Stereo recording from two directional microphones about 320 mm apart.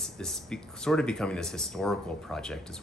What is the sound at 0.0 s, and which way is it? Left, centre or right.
Speech, centre.